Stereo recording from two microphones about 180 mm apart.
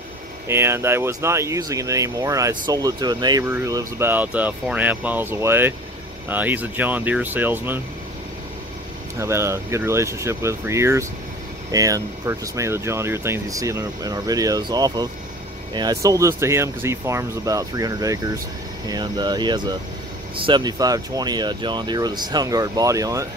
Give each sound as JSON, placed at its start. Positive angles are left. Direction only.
{"t": 0.5, "sound": "speech", "side_deg": -15}
{"t": 9.2, "sound": "speech", "side_deg": -15}